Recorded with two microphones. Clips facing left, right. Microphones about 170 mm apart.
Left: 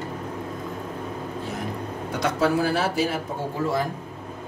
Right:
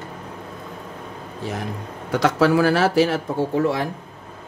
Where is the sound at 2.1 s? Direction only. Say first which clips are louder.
Right 5 dB; 85° right.